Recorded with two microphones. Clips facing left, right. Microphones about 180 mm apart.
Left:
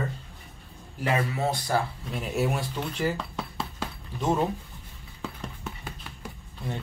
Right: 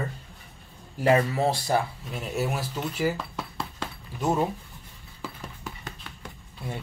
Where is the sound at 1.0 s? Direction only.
40° right (ahead or behind).